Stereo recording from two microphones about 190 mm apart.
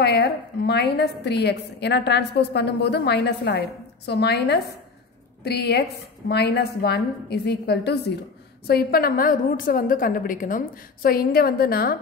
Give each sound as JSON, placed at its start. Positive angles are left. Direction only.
{"t": 0.0, "sound": "a woman's voice", "side_deg": 60}